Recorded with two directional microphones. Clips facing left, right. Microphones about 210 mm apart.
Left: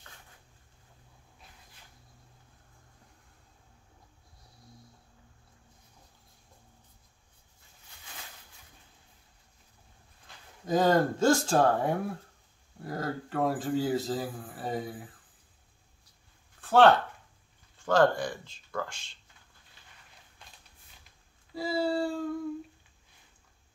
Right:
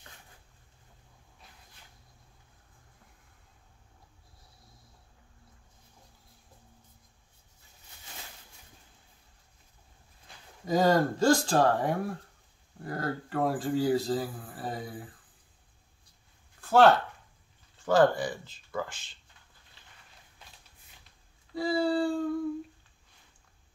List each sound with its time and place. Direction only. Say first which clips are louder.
10.6 s a man's voice: even; centre (ahead or behind)
16.6 s a man's voice: even; centre (ahead or behind)
21.5 s a man's voice: right 2 dB; 5° left (ahead or behind)